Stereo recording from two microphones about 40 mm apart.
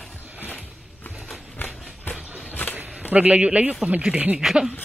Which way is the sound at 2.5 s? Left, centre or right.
Left.